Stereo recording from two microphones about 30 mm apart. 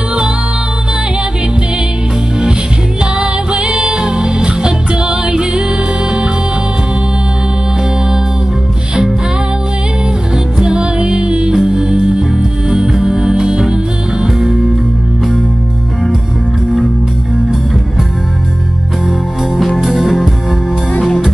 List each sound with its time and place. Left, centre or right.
3.2 s music: right
10.6 s music: right
19.8 s music: centre